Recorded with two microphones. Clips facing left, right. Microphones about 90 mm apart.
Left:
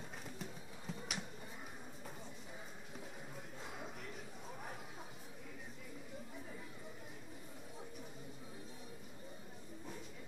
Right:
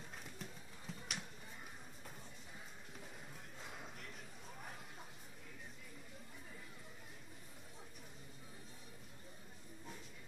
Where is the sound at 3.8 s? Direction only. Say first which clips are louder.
Left 4 dB; centre (ahead or behind).